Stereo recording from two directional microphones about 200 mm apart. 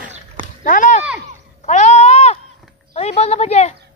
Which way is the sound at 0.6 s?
40° left (ahead or behind).